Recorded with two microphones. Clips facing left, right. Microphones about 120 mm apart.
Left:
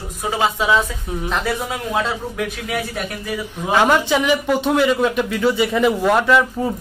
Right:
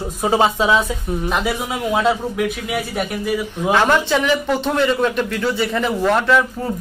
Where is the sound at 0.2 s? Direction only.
30° right (ahead or behind).